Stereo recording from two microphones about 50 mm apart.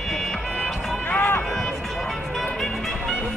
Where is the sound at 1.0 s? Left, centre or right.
Left.